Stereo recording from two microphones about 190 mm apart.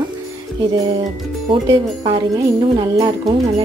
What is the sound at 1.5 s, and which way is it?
Speech, 25° right (ahead or behind).